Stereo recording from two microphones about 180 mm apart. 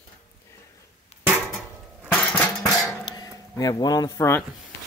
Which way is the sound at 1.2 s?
10° right (ahead or behind).